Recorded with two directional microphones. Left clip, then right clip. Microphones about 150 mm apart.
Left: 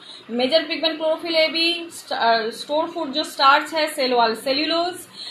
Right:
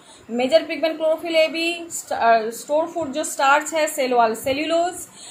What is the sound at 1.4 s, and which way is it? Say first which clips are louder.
Speech: left 2 dB; 45° right (ahead or behind).